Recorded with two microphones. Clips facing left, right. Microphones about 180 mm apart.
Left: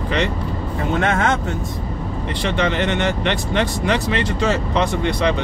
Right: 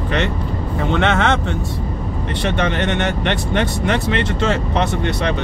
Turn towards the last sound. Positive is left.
turn(degrees=-55)  # may be behind; listen again after turning